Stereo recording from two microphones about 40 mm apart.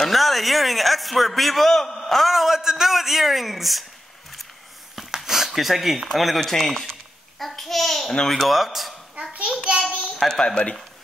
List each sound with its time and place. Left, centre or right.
0.0 s a man's voice: centre
5.1 s a sound: centre
6.1 s a child's voice: centre
8.1 s speech: centre
8.4 s a man's voice: centre
9.3 s child singing: right
9.7 s a child's voice: right
10.1 s speech: centre
10.4 s speech: left